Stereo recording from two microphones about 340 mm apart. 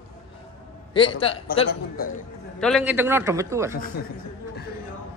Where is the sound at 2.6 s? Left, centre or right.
Centre.